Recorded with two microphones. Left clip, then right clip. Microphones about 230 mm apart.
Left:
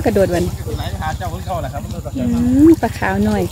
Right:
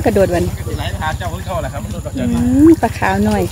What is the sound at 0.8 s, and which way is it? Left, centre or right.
Speech, centre.